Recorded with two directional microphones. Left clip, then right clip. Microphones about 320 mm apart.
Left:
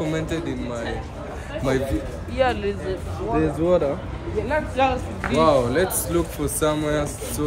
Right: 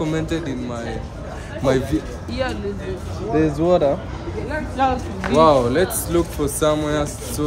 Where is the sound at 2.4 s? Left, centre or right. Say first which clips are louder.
Left 4 dB; centre.